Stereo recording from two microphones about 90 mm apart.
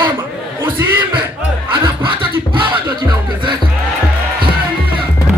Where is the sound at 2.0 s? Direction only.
70° right (ahead or behind).